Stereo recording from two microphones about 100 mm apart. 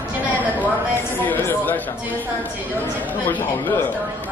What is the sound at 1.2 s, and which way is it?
Speech, 20° left (ahead or behind).